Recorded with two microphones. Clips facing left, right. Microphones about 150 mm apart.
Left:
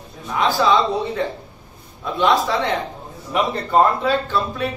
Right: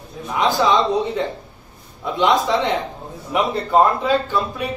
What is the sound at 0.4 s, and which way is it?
A man's voice, 20° right (ahead or behind).